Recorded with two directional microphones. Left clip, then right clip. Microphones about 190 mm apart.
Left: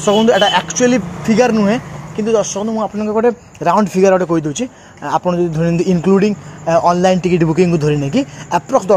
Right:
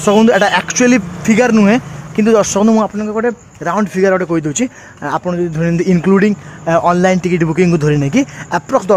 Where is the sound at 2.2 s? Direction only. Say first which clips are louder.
Right 4 dB; 30° right (ahead or behind).